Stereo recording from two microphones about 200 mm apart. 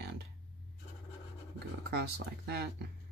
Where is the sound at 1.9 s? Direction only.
55° right (ahead or behind).